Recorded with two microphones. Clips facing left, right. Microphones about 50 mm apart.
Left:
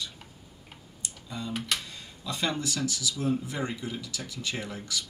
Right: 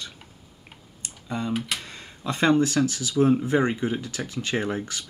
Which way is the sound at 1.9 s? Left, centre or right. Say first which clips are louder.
Right 6 dB; right.